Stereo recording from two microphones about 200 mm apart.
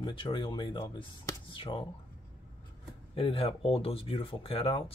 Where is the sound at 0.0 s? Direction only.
25° left (ahead or behind).